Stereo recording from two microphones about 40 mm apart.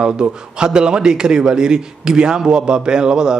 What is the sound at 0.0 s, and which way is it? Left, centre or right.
A man's voice, right.